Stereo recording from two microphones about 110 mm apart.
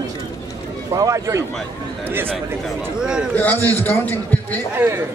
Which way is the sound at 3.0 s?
5° right (ahead or behind).